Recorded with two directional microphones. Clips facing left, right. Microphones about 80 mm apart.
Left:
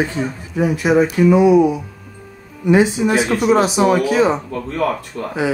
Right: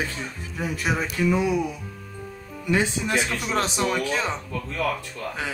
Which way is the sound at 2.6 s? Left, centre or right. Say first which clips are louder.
Left 10 dB; centre.